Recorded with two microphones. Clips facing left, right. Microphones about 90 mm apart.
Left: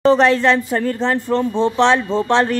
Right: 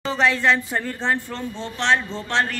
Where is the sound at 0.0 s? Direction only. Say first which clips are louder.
Left 9 dB; 60° left (ahead or behind).